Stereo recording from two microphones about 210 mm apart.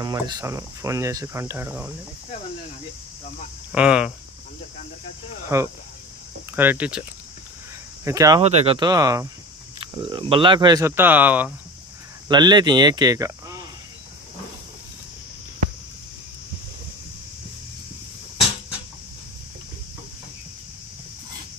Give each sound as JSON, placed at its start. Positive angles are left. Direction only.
{"t": 0.0, "sound": "speech", "side_deg": -20}
{"t": 3.7, "sound": "speech", "side_deg": -5}
{"t": 5.5, "sound": "speech", "side_deg": -10}
{"t": 8.4, "sound": "speech", "side_deg": -30}
{"t": 12.3, "sound": "speech", "side_deg": -20}